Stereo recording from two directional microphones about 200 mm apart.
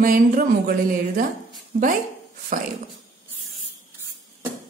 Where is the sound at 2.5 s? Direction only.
45° right (ahead or behind).